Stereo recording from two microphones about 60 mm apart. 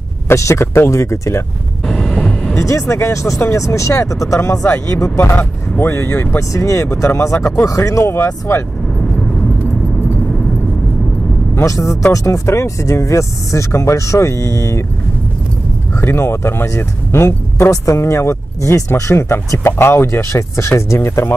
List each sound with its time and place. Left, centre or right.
0.3 s speech: left
1.9 s vehicle: centre
2.6 s speech: left
5.2 s speech: left
5.9 s speech: left
11.6 s speech: left
16.0 s speech: left
16.6 s speech: left
17.6 s speech: left